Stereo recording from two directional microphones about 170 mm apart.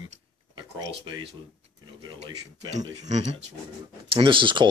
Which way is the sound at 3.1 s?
40° right (ahead or behind).